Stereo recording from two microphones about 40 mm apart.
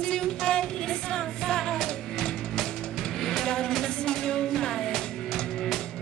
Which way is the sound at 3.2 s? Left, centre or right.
Centre.